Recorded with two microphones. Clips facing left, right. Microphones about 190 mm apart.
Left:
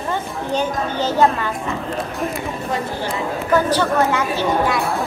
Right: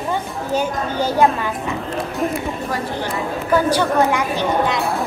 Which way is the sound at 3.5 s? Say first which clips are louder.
Right 1 dB; 15° right (ahead or behind).